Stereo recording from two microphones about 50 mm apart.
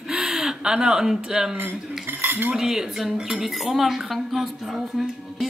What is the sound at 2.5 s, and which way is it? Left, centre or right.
Speech, centre.